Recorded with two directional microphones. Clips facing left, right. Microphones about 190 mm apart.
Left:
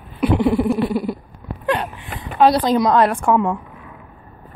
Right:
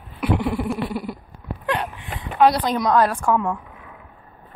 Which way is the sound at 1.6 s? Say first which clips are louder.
Left 4 dB; 35° left (ahead or behind).